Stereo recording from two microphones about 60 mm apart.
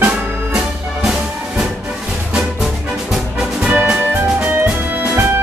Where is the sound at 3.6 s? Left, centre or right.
Centre.